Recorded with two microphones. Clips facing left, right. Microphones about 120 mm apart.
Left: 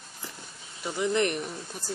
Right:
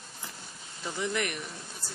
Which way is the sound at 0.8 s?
20° left (ahead or behind).